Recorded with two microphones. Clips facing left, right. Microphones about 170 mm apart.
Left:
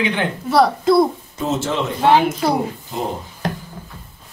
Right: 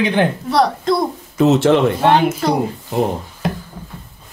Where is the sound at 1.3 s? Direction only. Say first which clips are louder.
Right 11 dB; 70° right (ahead or behind).